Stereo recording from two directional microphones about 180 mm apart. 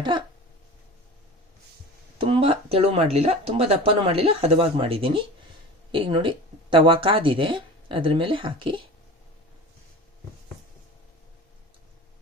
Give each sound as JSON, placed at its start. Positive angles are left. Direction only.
{"t": 2.1, "sound": "speech", "side_deg": -30}